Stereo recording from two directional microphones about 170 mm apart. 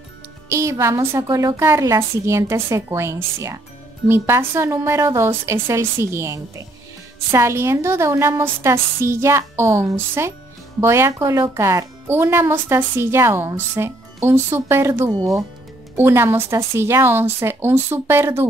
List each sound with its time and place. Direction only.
0.5 s a woman's voice: 15° right (ahead or behind)